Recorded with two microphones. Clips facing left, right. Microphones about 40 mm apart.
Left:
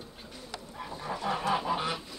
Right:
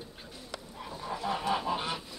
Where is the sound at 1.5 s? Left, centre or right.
Centre.